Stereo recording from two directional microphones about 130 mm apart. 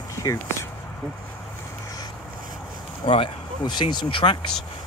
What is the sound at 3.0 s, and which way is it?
Speech, 45° left (ahead or behind).